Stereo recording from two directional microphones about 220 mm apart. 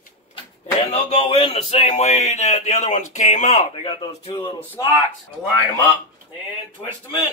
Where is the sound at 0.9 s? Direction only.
25° left (ahead or behind).